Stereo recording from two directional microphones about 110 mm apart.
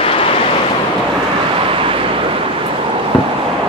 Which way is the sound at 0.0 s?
60° left (ahead or behind).